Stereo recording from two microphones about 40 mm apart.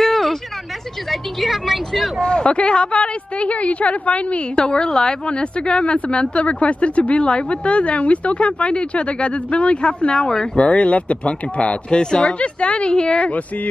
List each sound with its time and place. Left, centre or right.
0.0 s a sound: centre
1.4 s a woman's voice: centre
2.2 s speech: left